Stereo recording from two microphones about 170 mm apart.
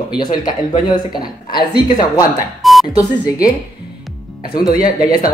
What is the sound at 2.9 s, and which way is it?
Speech, 20° left (ahead or behind).